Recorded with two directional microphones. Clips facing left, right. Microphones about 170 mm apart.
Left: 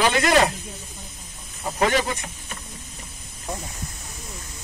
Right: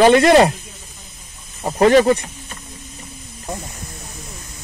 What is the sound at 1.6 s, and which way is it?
Speech, 40° right (ahead or behind).